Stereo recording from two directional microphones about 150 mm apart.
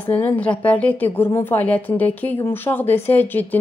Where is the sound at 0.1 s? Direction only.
10° left (ahead or behind).